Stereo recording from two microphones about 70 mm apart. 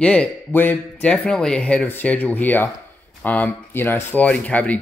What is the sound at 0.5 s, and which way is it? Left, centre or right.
Speech, left.